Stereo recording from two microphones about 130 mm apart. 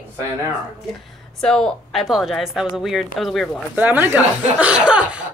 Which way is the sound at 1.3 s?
5° left (ahead or behind).